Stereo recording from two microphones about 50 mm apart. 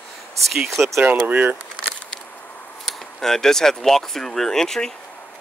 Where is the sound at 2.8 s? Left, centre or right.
Centre.